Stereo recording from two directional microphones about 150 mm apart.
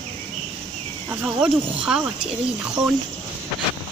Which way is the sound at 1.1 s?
10° right (ahead or behind).